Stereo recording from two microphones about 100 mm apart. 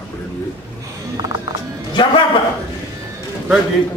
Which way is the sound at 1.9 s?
55° left (ahead or behind).